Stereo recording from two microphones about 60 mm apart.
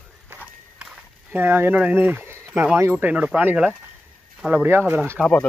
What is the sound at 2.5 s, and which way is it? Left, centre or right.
Speech, right.